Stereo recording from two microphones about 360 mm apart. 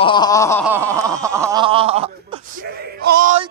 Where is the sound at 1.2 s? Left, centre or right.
Centre.